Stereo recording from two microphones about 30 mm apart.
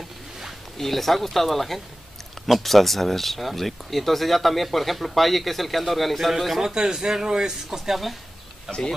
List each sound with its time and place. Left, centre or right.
0.7 s speech: centre
6.6 s a man's voice: centre